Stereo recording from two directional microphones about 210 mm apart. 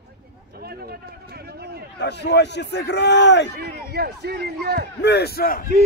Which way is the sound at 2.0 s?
55° left (ahead or behind).